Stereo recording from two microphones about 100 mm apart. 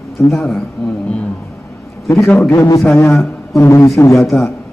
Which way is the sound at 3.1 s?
Centre (ahead or behind).